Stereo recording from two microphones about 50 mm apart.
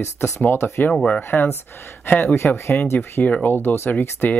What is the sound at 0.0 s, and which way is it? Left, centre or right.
Speech, left.